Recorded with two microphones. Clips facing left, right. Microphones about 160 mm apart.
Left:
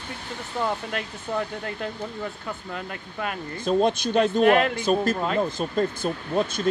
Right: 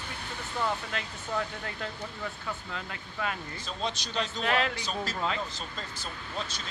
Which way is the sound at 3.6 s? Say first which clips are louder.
Left 17 dB; 55° left (ahead or behind).